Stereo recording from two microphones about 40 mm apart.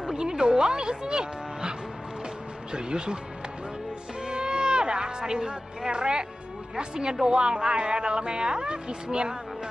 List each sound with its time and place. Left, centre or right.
0.0 s speech: centre
4.2 s music: right
6.8 s speech: right